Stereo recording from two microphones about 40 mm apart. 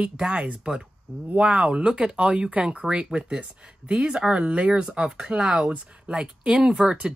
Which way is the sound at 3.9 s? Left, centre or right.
Centre.